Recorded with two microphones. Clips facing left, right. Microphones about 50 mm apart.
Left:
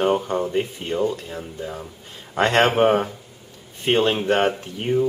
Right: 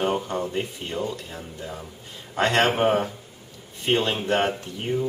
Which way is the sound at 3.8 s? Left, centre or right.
Left.